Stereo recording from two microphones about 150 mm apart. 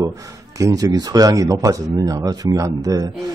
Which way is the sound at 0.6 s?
20° right (ahead or behind).